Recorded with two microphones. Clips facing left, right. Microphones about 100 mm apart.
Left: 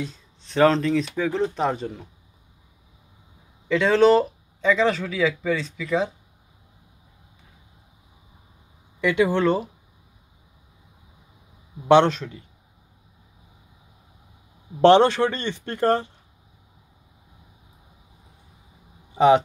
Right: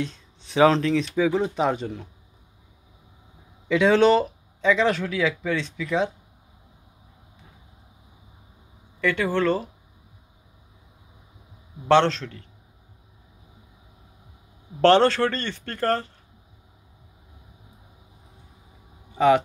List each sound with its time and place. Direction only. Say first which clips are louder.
0.0 s speech: right 2 dB; centre (ahead or behind)
3.6 s speech: even; 5° right (ahead or behind)
9.0 s speech: left 3 dB; 15° left (ahead or behind)
11.9 s speech: left 2 dB; 15° left (ahead or behind)
14.8 s speech: left 2 dB; 15° left (ahead or behind)
19.1 s speech: left 2 dB; 20° left (ahead or behind)